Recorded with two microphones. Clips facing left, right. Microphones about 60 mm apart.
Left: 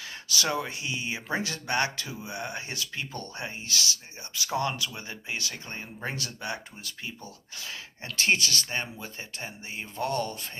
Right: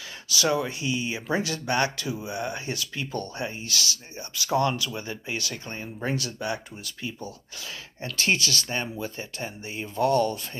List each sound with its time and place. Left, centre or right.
0.3 s speech: left
2.0 s speech: centre
2.3 s speech: left
6.1 s speech: left